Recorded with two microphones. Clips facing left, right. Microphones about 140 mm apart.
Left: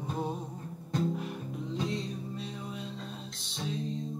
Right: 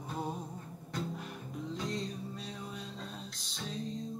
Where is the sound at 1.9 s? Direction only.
Centre (ahead or behind).